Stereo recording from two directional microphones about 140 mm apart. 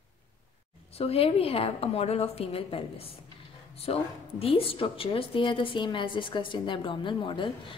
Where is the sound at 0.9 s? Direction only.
45° left (ahead or behind).